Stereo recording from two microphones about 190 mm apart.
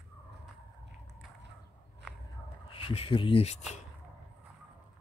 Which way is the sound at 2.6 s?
30° left (ahead or behind).